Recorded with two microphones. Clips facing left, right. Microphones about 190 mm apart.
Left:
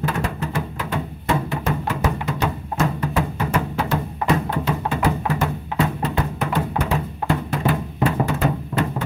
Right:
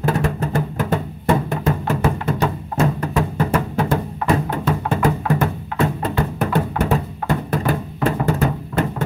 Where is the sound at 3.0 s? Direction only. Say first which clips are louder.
Right 3 dB; 50° right (ahead or behind).